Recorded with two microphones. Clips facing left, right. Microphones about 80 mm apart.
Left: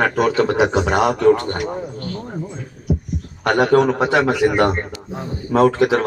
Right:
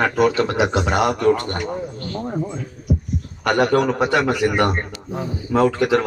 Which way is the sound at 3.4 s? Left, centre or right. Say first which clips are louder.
Left 3 dB; left.